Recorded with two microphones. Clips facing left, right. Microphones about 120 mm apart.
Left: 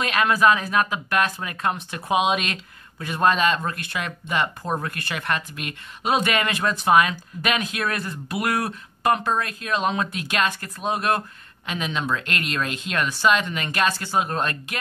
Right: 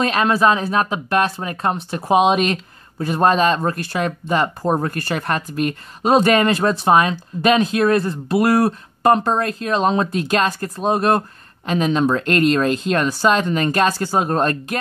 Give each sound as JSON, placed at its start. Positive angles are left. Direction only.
{"t": 0.0, "sound": "speech", "side_deg": -30}